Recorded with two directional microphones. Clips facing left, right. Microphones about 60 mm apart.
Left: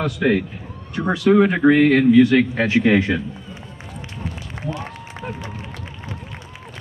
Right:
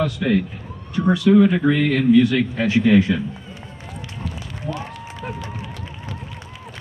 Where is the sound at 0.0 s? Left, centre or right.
Left.